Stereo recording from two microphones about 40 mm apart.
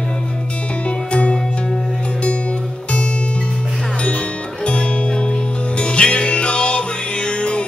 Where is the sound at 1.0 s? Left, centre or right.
Left.